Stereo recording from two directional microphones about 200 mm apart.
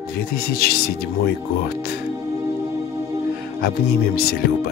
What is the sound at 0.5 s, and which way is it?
Speech, 50° left (ahead or behind).